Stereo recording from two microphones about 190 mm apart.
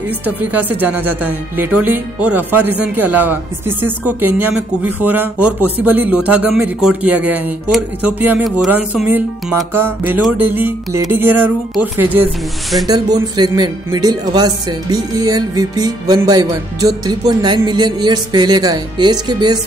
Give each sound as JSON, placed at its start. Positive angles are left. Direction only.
{"t": 0.4, "sound": "speech", "side_deg": -10}
{"t": 12.8, "sound": "speech", "side_deg": -20}